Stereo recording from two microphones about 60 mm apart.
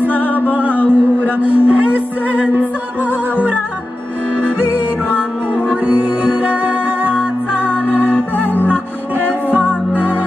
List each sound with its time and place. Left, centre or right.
0.7 s music: left
1.4 s a sound: right
5.5 s music: left
6.5 s music: right
7.6 s music: left